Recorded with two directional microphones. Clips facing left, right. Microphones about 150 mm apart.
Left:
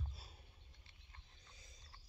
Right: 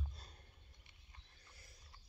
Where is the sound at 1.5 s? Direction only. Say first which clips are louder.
Right 1 dB; 20° left (ahead or behind).